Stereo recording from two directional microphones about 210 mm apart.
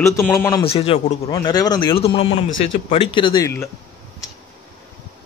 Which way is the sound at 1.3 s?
20° left (ahead or behind).